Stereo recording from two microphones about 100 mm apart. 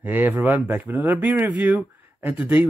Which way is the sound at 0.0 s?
15° right (ahead or behind).